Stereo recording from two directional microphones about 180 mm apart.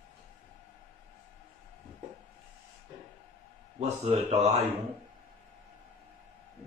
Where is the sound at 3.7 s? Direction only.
35° right (ahead or behind).